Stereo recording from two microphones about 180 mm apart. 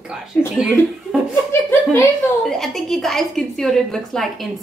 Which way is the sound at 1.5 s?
15° left (ahead or behind).